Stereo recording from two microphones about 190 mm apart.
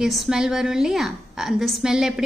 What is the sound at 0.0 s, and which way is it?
A woman's voice, centre (ahead or behind).